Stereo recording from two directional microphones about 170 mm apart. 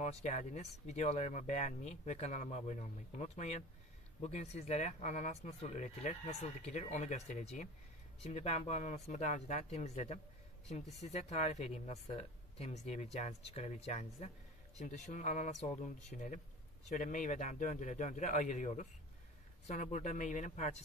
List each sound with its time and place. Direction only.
0.0 s speech: 40° left (ahead or behind)